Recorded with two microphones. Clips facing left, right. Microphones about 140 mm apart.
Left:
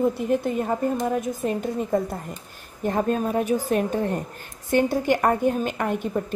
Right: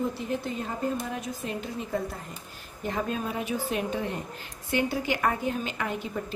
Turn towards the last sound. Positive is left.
turn(degrees=50)  # may be behind; listen again after turning